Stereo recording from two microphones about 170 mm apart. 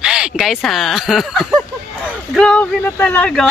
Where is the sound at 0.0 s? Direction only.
5° right (ahead or behind).